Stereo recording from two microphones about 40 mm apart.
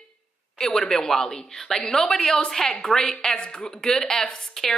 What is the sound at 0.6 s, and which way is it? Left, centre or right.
A woman's voice, centre.